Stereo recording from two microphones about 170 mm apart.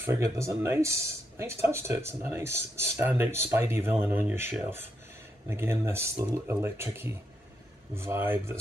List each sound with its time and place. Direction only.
0.0 s speech: 15° right (ahead or behind)